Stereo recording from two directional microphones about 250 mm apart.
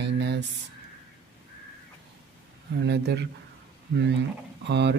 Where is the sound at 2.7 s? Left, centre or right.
Right.